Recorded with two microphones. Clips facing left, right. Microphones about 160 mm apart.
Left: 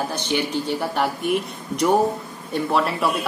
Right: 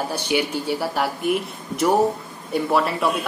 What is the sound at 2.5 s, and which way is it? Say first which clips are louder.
Speech: right 1 dB; centre (ahead or behind).